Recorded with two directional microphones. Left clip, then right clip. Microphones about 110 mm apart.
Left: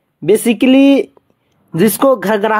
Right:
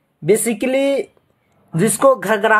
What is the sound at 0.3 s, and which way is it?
Speech, 65° left (ahead or behind).